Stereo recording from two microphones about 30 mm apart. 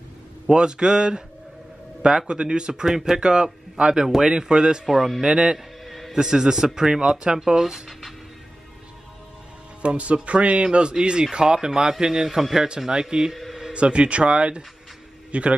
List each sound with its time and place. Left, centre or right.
0.6 s speech: right
4.8 s speech: centre
5.2 s speech: right
5.9 s music: centre
6.1 s speech: centre
6.9 s speech: right
9.8 s speech: right
12.3 s speech: centre
12.8 s speech: right
13.7 s a man's voice: right